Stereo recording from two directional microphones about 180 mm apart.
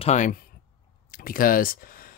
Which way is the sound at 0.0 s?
40° left (ahead or behind).